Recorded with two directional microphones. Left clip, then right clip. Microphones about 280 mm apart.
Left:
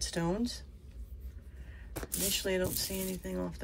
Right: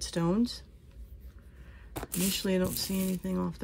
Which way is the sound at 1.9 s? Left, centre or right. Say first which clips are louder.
Right 3 dB; right.